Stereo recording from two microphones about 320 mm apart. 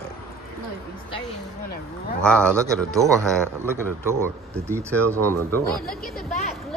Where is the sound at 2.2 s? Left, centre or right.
Centre.